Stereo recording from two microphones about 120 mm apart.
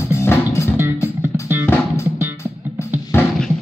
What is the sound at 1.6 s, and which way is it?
Music, 25° left (ahead or behind).